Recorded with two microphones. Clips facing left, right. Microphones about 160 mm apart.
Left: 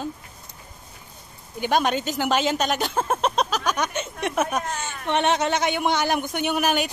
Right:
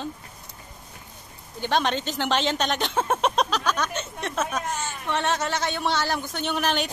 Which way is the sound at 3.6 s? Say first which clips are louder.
Left 1 dB; 15° left (ahead or behind).